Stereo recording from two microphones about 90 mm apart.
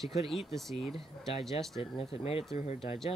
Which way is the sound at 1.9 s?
90° left.